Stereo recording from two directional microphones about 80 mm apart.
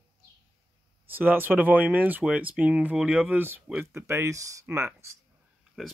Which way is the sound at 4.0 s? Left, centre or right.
Right.